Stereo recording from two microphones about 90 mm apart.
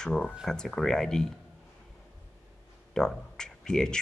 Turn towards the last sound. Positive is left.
turn(degrees=5)  # may be behind; listen again after turning